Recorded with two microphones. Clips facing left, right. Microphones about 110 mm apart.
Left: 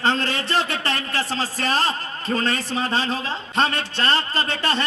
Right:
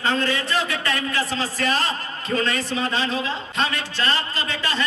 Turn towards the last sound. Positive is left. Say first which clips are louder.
# left 3 dB
turn(degrees=50)  # may be behind; listen again after turning